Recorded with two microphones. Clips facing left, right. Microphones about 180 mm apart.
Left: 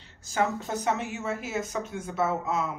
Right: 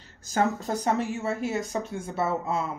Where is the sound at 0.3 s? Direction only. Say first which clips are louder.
Right 2 dB; 35° right (ahead or behind).